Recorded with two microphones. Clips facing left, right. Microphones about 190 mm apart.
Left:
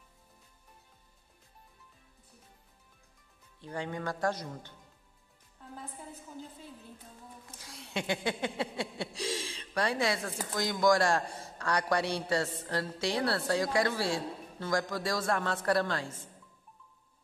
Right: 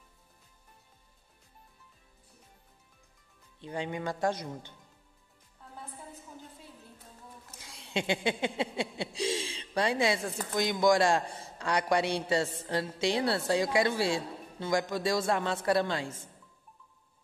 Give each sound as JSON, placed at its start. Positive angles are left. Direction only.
{"t": 3.6, "sound": "a man's voice", "side_deg": -20}
{"t": 7.9, "sound": "a man's voice", "side_deg": -20}